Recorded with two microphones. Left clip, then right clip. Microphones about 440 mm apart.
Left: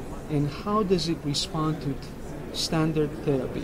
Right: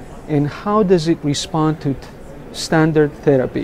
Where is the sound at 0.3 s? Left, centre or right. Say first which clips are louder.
Right 10 dB; right.